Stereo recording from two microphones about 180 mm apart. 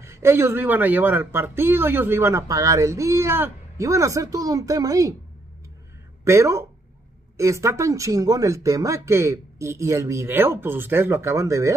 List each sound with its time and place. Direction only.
0.0 s speech: 15° right (ahead or behind)
6.2 s speech: 15° right (ahead or behind)